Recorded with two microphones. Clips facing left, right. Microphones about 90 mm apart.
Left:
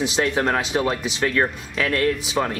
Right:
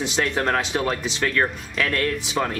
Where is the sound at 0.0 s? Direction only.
5° left (ahead or behind).